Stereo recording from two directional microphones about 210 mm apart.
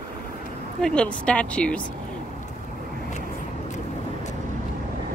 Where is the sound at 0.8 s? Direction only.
5° left (ahead or behind).